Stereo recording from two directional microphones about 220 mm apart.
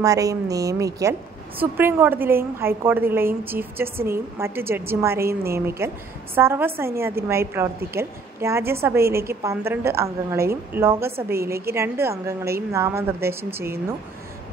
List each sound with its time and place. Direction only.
0.0 s a woman's voice: 15° right (ahead or behind)